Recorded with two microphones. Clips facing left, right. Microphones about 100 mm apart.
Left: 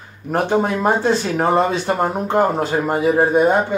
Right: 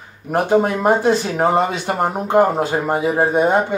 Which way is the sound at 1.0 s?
15° right (ahead or behind).